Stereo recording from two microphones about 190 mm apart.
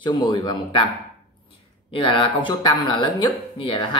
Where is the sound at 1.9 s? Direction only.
25° left (ahead or behind).